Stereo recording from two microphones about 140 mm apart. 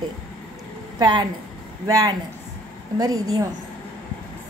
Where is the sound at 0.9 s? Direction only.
30° right (ahead or behind).